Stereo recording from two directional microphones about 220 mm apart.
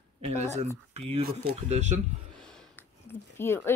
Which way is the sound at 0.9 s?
30° right (ahead or behind).